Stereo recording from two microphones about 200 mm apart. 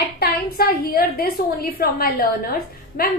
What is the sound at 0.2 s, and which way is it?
A woman's voice, 50° left (ahead or behind).